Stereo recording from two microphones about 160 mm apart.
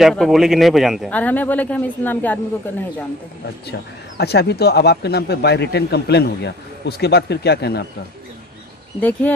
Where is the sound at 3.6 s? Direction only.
90° left.